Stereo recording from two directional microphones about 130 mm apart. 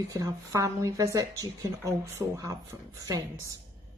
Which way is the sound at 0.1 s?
25° right (ahead or behind).